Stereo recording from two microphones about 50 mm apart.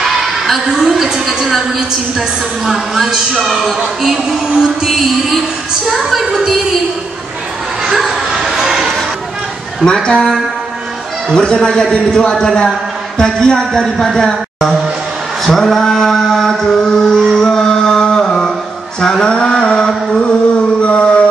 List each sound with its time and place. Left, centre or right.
0.0 s a woman's voice: centre
6.1 s a man's voice: centre
8.1 s a sound: centre
9.9 s a man's voice: centre
11.3 s a man's voice: centre
15.4 s a sound: centre; by 21.1 s left